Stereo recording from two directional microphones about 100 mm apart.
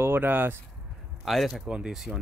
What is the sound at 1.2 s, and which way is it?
Speech, centre (ahead or behind).